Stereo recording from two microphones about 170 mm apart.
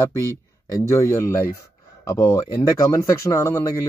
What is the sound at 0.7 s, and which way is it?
Speech, 15° left (ahead or behind).